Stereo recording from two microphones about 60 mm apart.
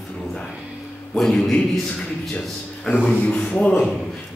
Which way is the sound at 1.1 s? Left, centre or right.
Centre.